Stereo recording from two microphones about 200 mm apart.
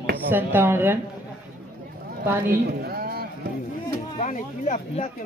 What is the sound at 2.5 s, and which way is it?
Speech, 50° right (ahead or behind).